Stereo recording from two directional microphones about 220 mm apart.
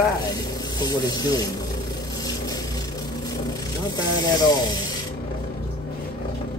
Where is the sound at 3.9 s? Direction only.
15° left (ahead or behind).